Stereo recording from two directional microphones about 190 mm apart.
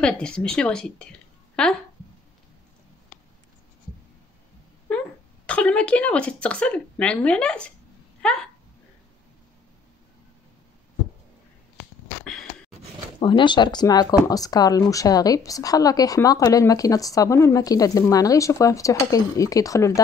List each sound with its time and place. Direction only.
0.0 s a woman's voice: 5° left (ahead or behind)
5.5 s a woman's voice: 5° left (ahead or behind)
13.2 s speech: 25° left (ahead or behind)